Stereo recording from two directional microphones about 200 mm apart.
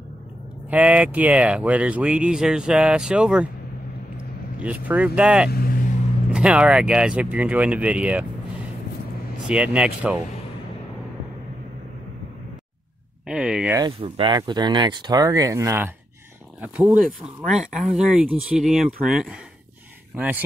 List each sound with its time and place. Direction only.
0.7 s speech: 5° right (ahead or behind)
4.6 s speech: 5° right (ahead or behind)
5.5 s vehicle: 45° left (ahead or behind)
6.3 s speech: 5° right (ahead or behind)
13.3 s a sound: 5° right (ahead or behind)
13.7 s speech: 25° right (ahead or behind)